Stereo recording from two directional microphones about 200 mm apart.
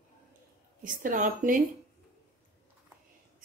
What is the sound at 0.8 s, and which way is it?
Speech, 40° right (ahead or behind).